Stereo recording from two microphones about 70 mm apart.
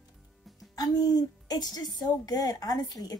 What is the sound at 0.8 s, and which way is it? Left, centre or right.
A woman's voice, left.